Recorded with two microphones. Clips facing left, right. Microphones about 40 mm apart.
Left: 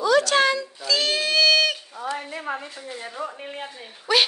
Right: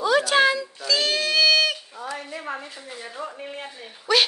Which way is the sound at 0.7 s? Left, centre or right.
Centre.